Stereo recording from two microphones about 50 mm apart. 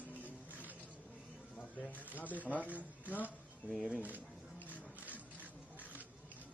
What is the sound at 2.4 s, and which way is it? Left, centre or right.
Speech, right.